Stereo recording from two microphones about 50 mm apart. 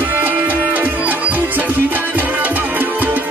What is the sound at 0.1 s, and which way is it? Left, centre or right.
Music, right.